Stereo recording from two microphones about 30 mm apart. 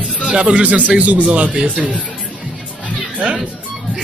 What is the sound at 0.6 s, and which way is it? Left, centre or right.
Speech, right.